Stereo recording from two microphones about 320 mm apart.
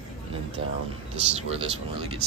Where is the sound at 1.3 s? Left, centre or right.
Centre.